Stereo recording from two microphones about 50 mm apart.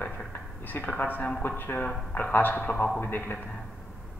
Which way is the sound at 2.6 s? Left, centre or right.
Left.